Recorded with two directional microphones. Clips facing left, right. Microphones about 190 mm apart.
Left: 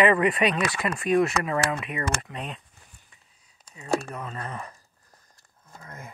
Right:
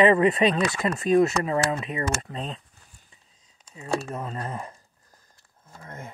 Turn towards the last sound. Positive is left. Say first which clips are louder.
# right 3 dB
turn(degrees=-25)  # may be behind; listen again after turning